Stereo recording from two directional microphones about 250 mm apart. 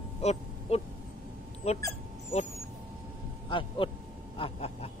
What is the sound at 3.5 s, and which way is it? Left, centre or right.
Speech, left.